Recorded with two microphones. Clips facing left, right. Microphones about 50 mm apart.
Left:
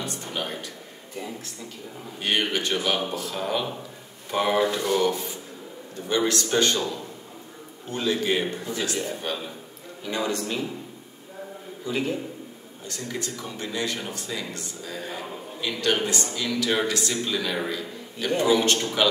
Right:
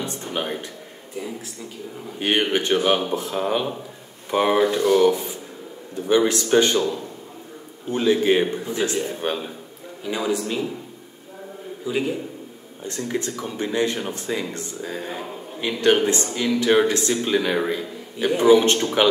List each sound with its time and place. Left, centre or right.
0.0 s a sound: right
2.1 s a man's voice: right
4.6 s speech: centre
5.1 s a man's voice: right
7.9 s a man's voice: right
10.0 s speech: centre
11.8 s speech: centre
12.8 s a man's voice: right